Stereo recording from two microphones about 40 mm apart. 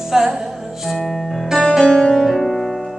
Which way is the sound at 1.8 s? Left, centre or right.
Centre.